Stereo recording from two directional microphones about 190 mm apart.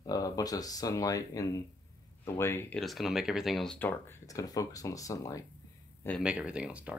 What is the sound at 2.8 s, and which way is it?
Speech, centre (ahead or behind).